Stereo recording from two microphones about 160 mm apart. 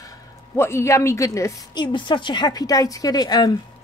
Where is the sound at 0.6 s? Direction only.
15° left (ahead or behind).